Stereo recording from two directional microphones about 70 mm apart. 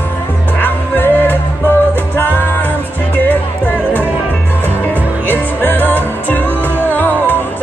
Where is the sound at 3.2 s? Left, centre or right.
Left.